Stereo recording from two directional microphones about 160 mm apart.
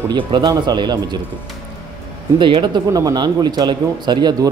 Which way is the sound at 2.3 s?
30° right (ahead or behind).